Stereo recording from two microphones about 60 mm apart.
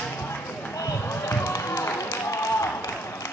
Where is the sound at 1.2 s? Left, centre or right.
Left.